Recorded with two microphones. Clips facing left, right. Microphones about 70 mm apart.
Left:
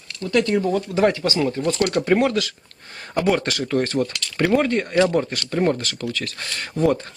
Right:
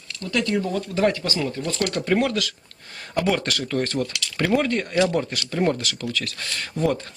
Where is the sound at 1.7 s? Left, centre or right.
Centre.